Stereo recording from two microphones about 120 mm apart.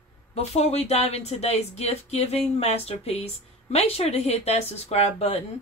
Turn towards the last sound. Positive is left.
turn(degrees=60)  # may be behind; listen again after turning